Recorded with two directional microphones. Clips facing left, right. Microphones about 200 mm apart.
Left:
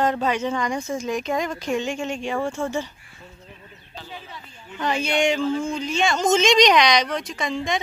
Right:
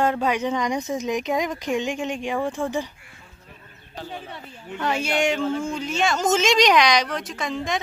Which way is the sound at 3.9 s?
55° right (ahead or behind).